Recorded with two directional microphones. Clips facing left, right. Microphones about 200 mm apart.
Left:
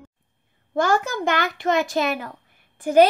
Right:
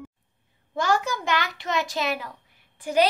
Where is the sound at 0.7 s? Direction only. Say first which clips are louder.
Left 4 dB; 55° left (ahead or behind).